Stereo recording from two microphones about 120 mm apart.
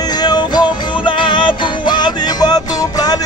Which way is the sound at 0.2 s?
35° left (ahead or behind).